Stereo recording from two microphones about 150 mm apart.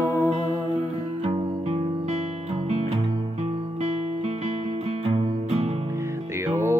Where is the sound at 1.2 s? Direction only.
45° right (ahead or behind).